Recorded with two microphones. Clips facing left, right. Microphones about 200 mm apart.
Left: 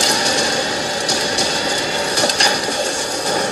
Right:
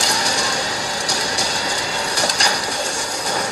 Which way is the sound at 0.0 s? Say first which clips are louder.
Left 4 dB; 25° left (ahead or behind).